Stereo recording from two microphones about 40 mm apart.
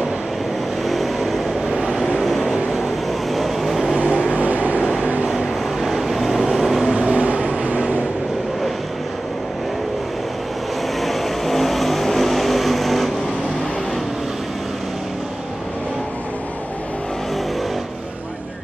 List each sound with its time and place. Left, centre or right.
0.8 s vehicle: centre
1.8 s vehicle: centre
2.2 s vehicle: centre
4.4 s vehicle: right
5.3 s vehicle: centre
7.1 s vehicle: right
11.0 s vehicle: centre